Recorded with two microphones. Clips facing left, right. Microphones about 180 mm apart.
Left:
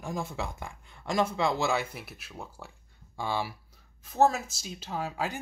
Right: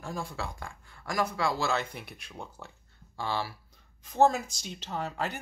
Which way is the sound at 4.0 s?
5° left (ahead or behind).